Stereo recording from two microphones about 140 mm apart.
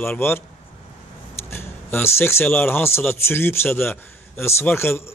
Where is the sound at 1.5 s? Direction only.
15° left (ahead or behind).